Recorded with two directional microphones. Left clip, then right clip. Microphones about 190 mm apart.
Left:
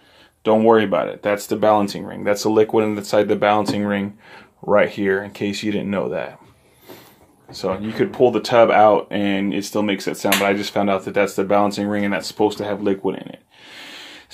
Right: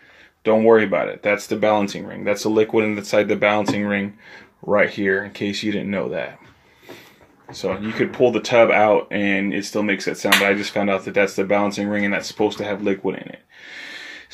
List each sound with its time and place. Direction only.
0.4 s speech: 10° left (ahead or behind)
7.6 s speech: 5° left (ahead or behind)
13.7 s snort: 90° left